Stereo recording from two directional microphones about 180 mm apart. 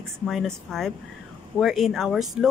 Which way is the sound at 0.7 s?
Centre (ahead or behind).